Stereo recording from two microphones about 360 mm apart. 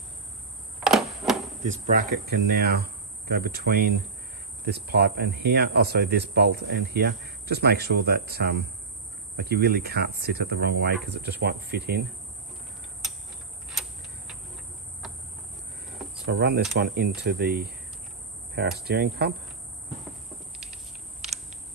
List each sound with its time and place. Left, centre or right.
0.7 s a sound: centre
1.6 s speech: right
13.7 s tick-tock: centre
16.3 s speech: right